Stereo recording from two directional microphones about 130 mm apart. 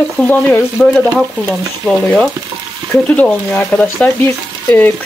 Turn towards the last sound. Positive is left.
turn(degrees=15)  # may be behind; listen again after turning